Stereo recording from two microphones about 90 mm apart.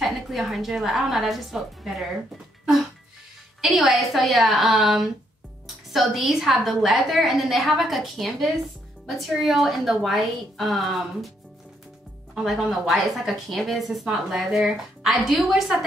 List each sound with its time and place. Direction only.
0.0 s speech: centre (ahead or behind)
3.6 s speech: centre (ahead or behind)
12.6 s speech: centre (ahead or behind)